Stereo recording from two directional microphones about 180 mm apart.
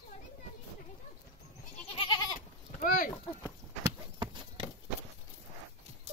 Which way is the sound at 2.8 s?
50° left (ahead or behind).